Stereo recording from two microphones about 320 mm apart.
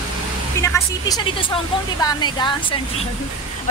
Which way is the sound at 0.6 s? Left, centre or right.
Centre.